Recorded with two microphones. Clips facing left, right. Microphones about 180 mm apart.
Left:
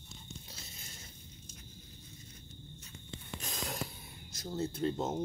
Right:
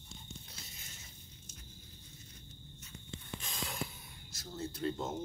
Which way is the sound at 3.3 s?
40° left (ahead or behind).